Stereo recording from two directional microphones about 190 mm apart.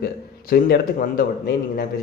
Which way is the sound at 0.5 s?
50° left (ahead or behind).